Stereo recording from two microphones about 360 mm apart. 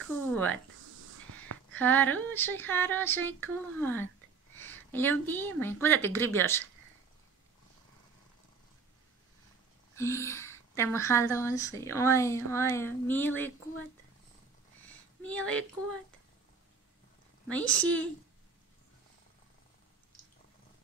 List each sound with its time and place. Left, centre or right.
0.3 s speech: centre
1.0 s a sound: right
1.7 s a woman's voice: centre
9.9 s a woman's voice: centre
15.2 s a woman's voice: centre
17.5 s a woman's voice: centre